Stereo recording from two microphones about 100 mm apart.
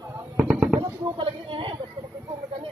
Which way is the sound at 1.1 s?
60° right (ahead or behind).